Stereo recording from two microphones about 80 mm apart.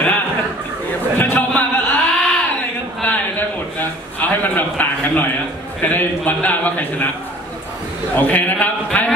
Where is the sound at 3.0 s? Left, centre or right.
Left.